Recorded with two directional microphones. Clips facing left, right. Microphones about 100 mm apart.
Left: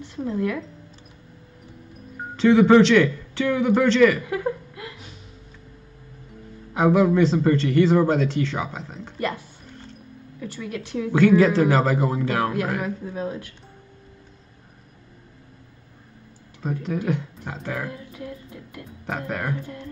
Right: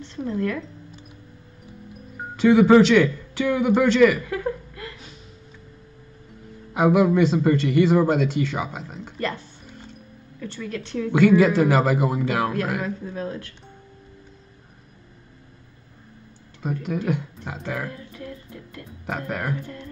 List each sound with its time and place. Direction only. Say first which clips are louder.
0.0 s speech: even; 10° left (ahead or behind)
2.1 s speech: even; 5° right (ahead or behind)
4.2 s a sound: left 1 dB; 20° left (ahead or behind)
6.7 s a man's voice: even; 5° right (ahead or behind)
10.4 s speech: even; 10° left (ahead or behind)
11.1 s a man's voice: even; 5° right (ahead or behind)
12.8 s speech: left 1 dB; 15° left (ahead or behind)
16.6 s a man's voice: even; 5° right (ahead or behind)
17.8 s music: left 1 dB; 15° left (ahead or behind)
18.9 s speech: even; centre (ahead or behind)